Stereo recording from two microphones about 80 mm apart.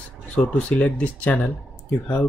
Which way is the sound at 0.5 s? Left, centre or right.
Centre.